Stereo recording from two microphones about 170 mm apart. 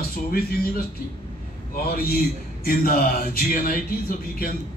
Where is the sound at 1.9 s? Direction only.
60° left (ahead or behind).